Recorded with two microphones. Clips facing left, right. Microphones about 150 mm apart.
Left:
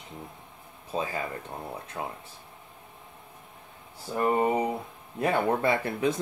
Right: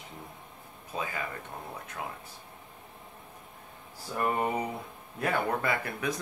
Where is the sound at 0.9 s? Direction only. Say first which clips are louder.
Left 4 dB; 30° left (ahead or behind).